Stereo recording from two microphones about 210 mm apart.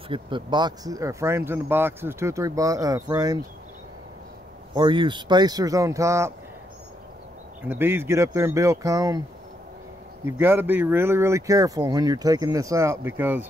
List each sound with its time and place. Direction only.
0.1 s speech: 20° right (ahead or behind)
4.7 s speech: 20° right (ahead or behind)
7.6 s speech: 10° right (ahead or behind)
10.2 s speech: 10° right (ahead or behind)